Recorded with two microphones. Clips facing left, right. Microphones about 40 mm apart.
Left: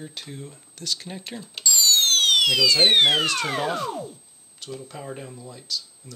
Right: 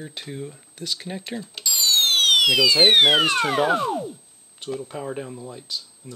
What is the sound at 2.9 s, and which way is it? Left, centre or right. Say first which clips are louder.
Speech: right 3 dB; centre.